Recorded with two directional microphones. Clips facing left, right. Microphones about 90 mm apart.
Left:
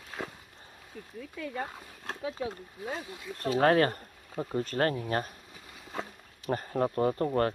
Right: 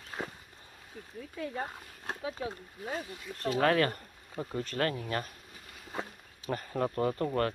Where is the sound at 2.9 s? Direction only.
10° left (ahead or behind).